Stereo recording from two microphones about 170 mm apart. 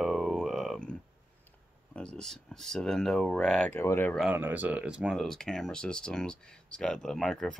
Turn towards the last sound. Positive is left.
turn(degrees=5)  # may be behind; listen again after turning